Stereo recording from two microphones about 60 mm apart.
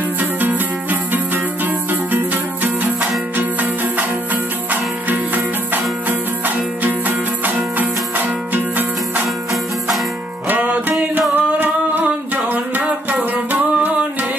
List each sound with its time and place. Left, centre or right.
0.2 s music: right
5.0 s music: right
10.5 s music: right